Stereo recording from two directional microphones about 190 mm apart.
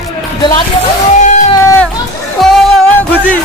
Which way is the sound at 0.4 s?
25° left (ahead or behind).